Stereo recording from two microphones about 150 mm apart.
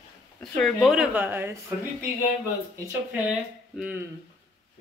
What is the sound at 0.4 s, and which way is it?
Speech, 5° left (ahead or behind).